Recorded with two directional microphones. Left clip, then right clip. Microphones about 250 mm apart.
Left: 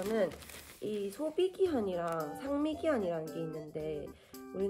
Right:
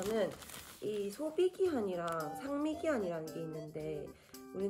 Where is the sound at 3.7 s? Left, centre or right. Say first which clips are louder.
Left 3 dB; left.